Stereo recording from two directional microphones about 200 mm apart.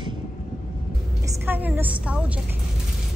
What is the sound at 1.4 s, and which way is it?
Speech, 10° right (ahead or behind).